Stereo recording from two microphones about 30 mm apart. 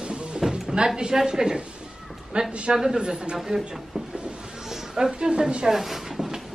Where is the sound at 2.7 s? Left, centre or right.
Centre.